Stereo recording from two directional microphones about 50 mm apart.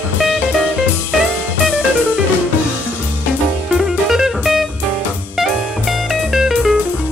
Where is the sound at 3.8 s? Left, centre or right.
Centre.